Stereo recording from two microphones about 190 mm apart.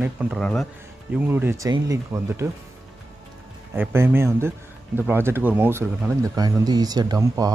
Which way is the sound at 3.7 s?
10° right (ahead or behind).